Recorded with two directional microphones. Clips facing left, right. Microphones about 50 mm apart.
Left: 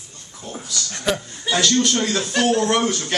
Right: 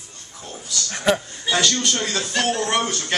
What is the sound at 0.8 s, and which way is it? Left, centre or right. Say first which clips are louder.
Speech: right 4 dB; centre.